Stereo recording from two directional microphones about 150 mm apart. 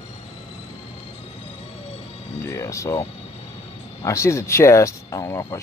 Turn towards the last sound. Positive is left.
turn(degrees=20)  # may be behind; listen again after turning